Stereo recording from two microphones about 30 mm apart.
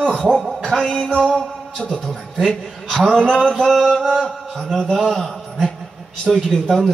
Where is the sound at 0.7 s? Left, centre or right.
Centre.